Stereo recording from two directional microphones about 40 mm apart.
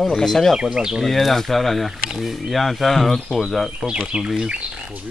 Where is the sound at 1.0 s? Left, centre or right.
Centre.